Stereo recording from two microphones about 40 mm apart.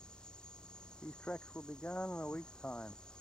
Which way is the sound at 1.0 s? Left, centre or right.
Left.